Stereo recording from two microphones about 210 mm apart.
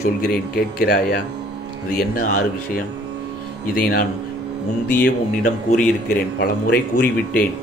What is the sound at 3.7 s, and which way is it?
Speech, 45° left (ahead or behind).